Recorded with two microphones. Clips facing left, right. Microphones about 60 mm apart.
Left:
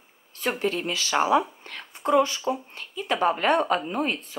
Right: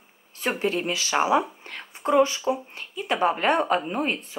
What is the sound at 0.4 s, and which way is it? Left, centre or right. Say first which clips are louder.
Speech: right 1 dB; centre.